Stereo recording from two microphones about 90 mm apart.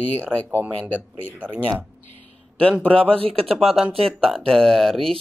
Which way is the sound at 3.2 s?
90° right.